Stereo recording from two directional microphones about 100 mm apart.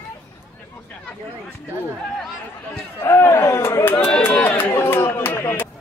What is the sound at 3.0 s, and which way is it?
Chatter, 25° left (ahead or behind).